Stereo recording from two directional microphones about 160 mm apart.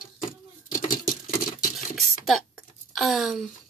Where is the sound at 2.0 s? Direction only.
Centre (ahead or behind).